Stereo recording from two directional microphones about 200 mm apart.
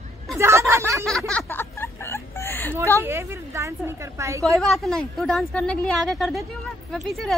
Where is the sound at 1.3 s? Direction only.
10° left (ahead or behind).